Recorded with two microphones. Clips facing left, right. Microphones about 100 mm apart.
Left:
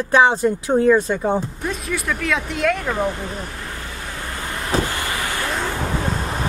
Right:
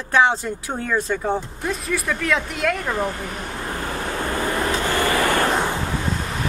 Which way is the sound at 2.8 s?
20° left (ahead or behind).